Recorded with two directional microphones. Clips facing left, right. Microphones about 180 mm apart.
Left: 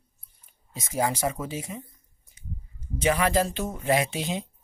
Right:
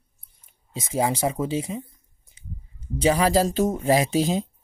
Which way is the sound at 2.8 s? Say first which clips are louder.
Right 4 dB; 30° right (ahead or behind).